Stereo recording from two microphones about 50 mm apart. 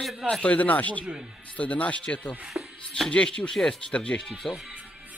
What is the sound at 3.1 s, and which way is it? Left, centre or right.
Speech, left.